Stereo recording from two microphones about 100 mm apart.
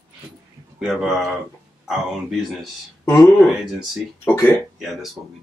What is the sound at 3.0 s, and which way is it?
Speech, 25° left (ahead or behind).